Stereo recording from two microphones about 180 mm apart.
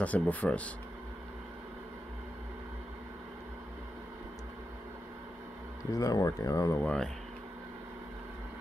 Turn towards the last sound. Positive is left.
turn(degrees=15)  # may be behind; listen again after turning